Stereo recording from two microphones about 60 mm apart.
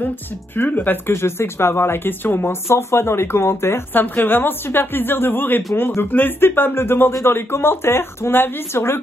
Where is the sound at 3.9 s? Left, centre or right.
Left.